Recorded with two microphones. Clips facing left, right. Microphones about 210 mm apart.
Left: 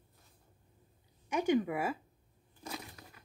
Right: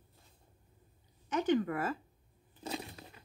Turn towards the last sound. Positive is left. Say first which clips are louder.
# right 4 dB
turn(degrees=-25)  # may be behind; listen again after turning